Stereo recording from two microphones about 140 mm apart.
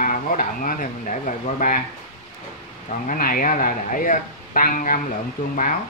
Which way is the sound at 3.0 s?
80° left.